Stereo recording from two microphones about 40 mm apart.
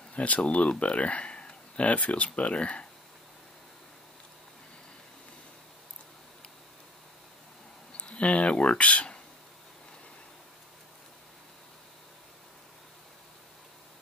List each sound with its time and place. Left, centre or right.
0.1 s speech: left
8.0 s speech: left